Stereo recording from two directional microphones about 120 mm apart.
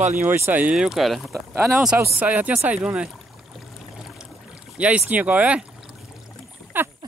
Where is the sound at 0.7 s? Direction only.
Centre (ahead or behind).